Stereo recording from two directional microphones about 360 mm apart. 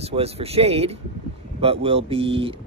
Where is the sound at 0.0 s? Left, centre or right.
Centre.